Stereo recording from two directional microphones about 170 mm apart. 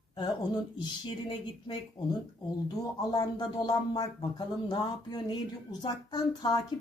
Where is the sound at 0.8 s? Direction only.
30° left (ahead or behind).